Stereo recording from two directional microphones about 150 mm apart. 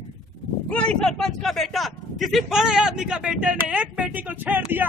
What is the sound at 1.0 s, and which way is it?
Speech, 5° left (ahead or behind).